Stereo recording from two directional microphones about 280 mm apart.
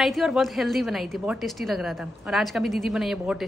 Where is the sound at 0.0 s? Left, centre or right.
Centre.